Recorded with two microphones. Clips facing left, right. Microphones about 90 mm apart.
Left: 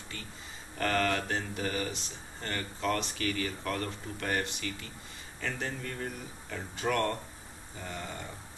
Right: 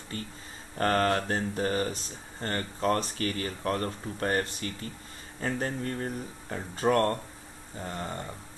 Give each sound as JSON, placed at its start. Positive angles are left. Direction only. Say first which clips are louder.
{"t": 0.1, "sound": "speech", "louder": "right 7 dB", "side_deg": -40}